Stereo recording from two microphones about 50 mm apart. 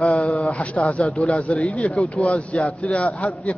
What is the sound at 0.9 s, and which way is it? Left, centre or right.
A man's voice, left.